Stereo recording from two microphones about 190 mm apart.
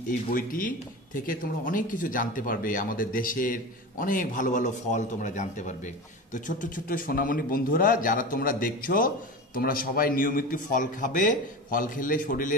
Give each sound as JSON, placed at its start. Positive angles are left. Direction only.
{"t": 0.3, "sound": "speech", "side_deg": 50}